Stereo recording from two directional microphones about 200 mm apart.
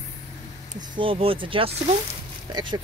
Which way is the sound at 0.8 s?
25° right (ahead or behind).